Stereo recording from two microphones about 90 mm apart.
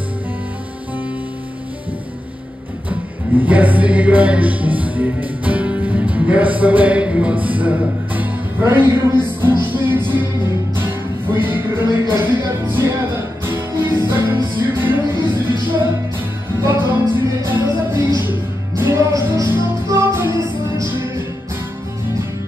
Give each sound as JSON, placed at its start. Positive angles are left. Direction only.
{"t": 2.9, "sound": "music", "side_deg": -15}
{"t": 11.8, "sound": "music", "side_deg": 50}
{"t": 12.2, "sound": "music", "side_deg": -25}
{"t": 17.5, "sound": "music", "side_deg": -25}
{"t": 17.9, "sound": "music", "side_deg": 50}
{"t": 18.2, "sound": "music", "side_deg": -25}